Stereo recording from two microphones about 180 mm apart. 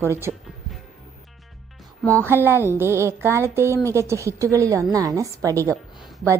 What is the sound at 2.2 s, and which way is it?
Speech, 10° right (ahead or behind).